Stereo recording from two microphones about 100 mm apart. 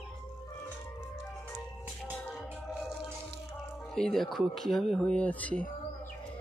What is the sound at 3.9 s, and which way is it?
Speech, 5° left (ahead or behind).